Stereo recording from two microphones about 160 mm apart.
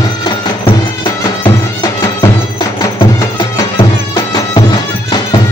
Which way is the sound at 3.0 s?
30° left (ahead or behind).